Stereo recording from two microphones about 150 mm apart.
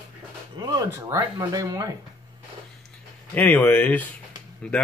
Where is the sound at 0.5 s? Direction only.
25° right (ahead or behind).